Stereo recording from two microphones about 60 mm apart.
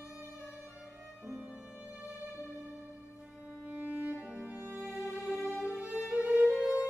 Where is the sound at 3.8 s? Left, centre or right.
Right.